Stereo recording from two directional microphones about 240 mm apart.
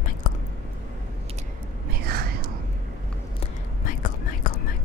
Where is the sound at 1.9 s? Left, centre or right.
Right.